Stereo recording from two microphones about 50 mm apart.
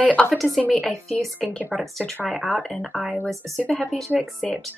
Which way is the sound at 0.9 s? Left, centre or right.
Centre.